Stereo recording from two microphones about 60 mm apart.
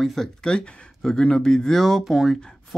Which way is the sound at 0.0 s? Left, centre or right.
Centre.